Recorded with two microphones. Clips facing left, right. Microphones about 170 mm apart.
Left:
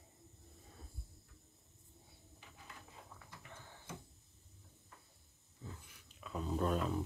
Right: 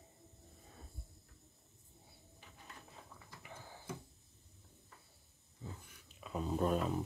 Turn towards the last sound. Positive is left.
turn(degrees=-5)  # may be behind; listen again after turning